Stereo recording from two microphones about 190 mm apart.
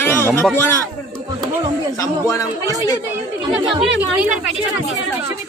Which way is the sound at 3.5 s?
Centre (ahead or behind).